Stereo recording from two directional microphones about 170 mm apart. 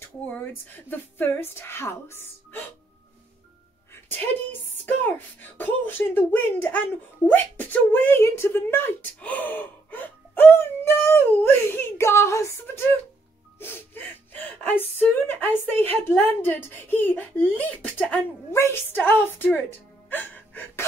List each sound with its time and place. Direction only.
0.3 s speech: 10° left (ahead or behind)
4.8 s speech: 10° left (ahead or behind)
20.1 s gasp: 10° left (ahead or behind)